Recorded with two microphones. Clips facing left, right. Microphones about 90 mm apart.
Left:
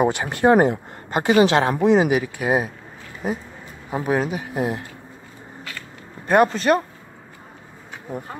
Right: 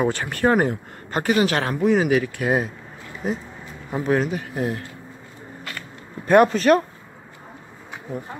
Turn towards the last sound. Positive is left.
turn(degrees=0)  # may be behind; listen again after turning